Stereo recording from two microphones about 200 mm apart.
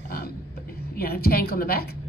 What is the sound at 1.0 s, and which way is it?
Speech, 50° left (ahead or behind).